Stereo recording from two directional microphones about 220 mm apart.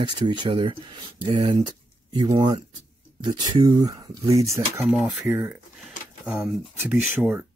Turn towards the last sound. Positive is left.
turn(degrees=-10)  # may be behind; listen again after turning